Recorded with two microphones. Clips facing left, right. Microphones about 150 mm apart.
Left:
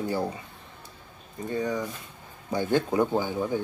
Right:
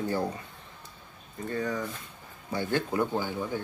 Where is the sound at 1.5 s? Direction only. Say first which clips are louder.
Left 3 dB; 15° left (ahead or behind).